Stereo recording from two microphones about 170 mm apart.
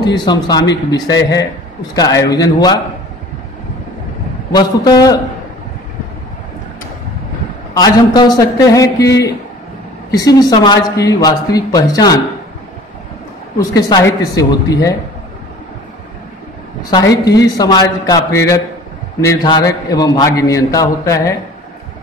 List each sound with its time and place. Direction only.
0.0 s a man's voice: 25° left (ahead or behind)
4.6 s a man's voice: 25° left (ahead or behind)
7.7 s a man's voice: 25° left (ahead or behind)
10.1 s a man's voice: 20° left (ahead or behind)
13.6 s a man's voice: 25° left (ahead or behind)
17.1 s a man's voice: 20° left (ahead or behind)